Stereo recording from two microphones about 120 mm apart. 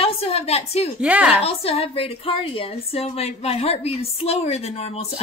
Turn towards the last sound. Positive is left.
turn(degrees=60)  # may be behind; listen again after turning